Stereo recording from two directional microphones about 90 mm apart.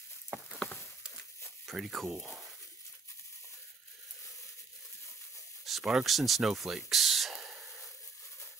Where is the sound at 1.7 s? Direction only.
Centre (ahead or behind).